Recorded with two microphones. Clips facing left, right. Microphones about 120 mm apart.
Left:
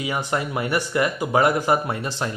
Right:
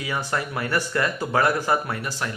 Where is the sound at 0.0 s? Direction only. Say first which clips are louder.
Left 2 dB; 20° left (ahead or behind).